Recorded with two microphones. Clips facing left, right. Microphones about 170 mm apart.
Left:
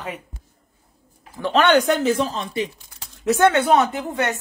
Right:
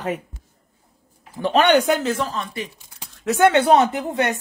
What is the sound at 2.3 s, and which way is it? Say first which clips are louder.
Speech: left 3 dB; 20° left (ahead or behind).